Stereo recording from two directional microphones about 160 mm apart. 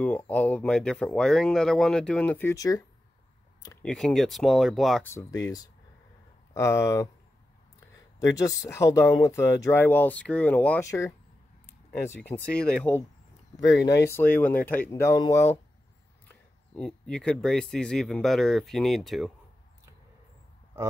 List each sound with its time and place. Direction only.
0.0 s speech: 10° left (ahead or behind)
3.8 s speech: 5° left (ahead or behind)
5.0 s speech: 20° left (ahead or behind)
8.2 s speech: 20° left (ahead or behind)
16.3 s speech: 5° left (ahead or behind)